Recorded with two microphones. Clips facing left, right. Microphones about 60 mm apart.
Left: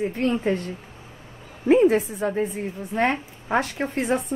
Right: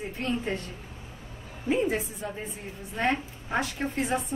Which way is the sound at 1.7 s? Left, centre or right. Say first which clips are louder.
Left 10 dB; left.